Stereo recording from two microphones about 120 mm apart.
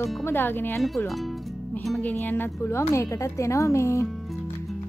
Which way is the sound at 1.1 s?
Centre (ahead or behind).